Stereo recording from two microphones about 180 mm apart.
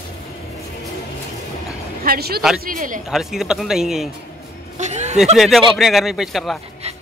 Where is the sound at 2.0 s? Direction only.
60° right (ahead or behind).